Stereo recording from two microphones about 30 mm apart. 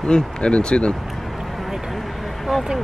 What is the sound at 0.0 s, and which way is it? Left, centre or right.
Speech, left.